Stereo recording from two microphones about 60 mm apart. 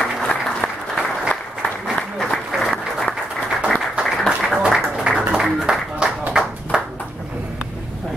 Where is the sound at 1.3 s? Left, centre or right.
Left.